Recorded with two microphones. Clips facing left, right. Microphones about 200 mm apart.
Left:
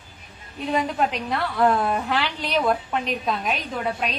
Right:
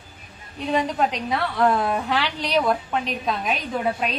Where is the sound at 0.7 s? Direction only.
Centre (ahead or behind).